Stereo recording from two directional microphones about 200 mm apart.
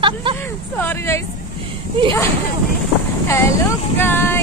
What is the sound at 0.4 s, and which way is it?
Vehicle, 10° left (ahead or behind).